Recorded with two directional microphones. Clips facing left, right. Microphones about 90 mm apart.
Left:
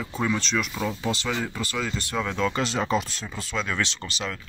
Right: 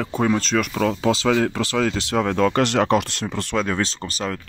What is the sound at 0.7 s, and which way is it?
Speech, 70° right (ahead or behind).